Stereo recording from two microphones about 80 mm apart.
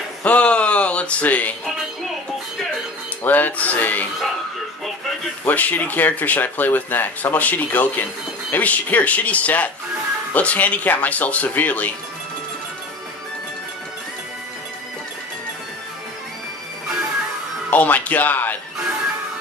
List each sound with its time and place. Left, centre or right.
0.2 s a sound: centre
3.3 s speech: left
5.4 s speech: left
17.6 s speech: left